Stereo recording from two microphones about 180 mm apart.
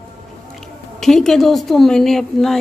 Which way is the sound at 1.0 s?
5° left (ahead or behind).